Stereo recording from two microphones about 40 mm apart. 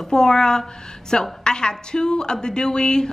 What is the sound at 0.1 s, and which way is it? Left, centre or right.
A woman's voice, centre.